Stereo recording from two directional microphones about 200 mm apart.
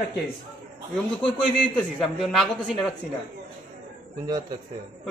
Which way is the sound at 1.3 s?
5° left (ahead or behind).